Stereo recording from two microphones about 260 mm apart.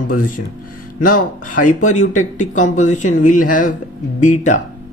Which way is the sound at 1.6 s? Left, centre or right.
Left.